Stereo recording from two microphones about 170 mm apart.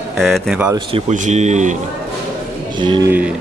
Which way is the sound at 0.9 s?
45° right (ahead or behind).